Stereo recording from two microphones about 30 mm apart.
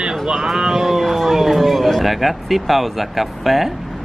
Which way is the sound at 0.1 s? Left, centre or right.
Centre.